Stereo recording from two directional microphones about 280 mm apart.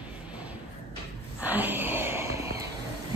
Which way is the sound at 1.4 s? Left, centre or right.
Centre.